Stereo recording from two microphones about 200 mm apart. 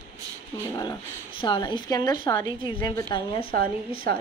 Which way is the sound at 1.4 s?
25° left (ahead or behind).